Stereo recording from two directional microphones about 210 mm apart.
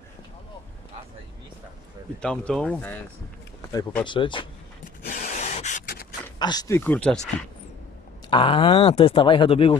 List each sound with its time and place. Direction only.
2.2 s speech: 5° left (ahead or behind)
4.0 s speech: 25° left (ahead or behind)
5.0 s a sound: 40° left (ahead or behind)
6.4 s speech: 20° left (ahead or behind)
8.3 s speech: 25° left (ahead or behind)